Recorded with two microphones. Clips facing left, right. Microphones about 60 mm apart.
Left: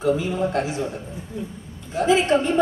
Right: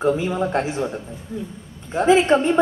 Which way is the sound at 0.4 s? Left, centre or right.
Right.